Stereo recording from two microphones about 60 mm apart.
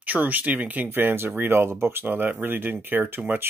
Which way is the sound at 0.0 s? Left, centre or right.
Right.